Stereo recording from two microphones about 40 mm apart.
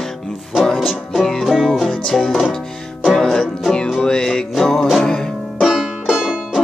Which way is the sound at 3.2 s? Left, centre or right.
Centre.